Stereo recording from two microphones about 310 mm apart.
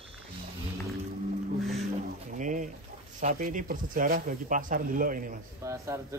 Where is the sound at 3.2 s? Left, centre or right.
Right.